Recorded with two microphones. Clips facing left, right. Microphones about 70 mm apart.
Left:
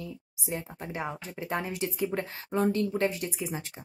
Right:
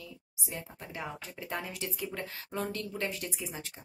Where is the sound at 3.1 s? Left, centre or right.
Centre.